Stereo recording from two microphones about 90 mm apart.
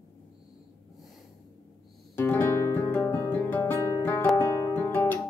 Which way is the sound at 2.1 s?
25° left (ahead or behind).